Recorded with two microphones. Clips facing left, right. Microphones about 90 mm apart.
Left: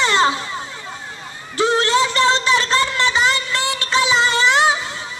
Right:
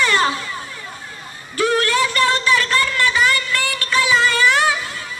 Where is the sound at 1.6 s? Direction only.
25° left (ahead or behind).